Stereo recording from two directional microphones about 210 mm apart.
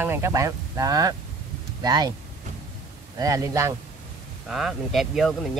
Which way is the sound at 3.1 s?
15° right (ahead or behind).